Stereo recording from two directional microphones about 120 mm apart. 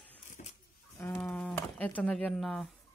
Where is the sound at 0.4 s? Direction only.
90° left.